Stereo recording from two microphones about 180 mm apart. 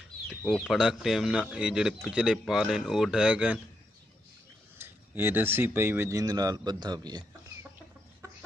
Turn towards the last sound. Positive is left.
turn(degrees=-25)  # may be behind; listen again after turning